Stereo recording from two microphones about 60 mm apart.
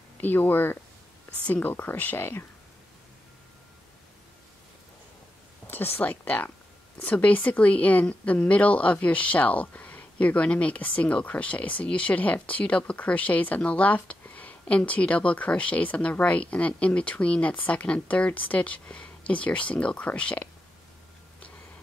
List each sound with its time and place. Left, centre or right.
0.2 s speech: left
5.7 s a woman's voice: left